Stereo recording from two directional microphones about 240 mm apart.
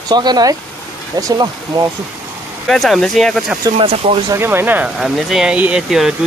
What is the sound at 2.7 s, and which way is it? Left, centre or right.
Speech, centre.